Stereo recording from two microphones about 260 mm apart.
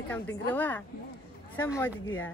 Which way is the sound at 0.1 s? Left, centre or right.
Centre.